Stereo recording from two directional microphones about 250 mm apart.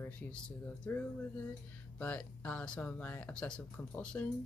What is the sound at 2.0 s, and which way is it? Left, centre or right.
Speech, centre.